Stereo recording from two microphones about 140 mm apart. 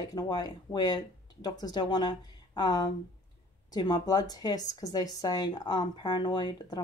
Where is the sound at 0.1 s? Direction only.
30° left (ahead or behind).